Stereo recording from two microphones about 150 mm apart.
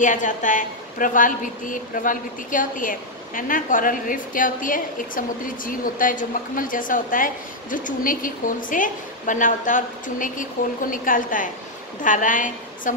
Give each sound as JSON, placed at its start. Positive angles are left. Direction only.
{"t": 0.0, "sound": "a woman's voice", "side_deg": 60}